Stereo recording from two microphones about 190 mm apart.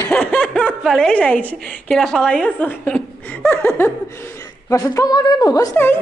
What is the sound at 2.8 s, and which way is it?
Laughter, 5° left (ahead or behind).